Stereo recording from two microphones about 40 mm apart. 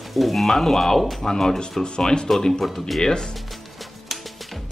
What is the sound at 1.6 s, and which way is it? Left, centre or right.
Speech, centre.